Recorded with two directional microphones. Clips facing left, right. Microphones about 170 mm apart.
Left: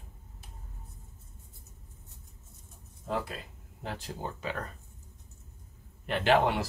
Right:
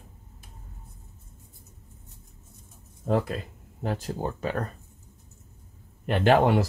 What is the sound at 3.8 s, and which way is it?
Speech, 45° right (ahead or behind).